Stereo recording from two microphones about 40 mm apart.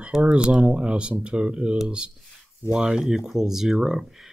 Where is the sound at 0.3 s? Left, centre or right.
Right.